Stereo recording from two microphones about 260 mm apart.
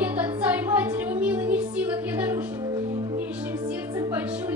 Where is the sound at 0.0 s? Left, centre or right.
Centre.